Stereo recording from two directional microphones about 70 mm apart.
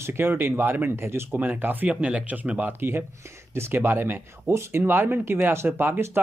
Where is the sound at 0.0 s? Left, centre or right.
Right.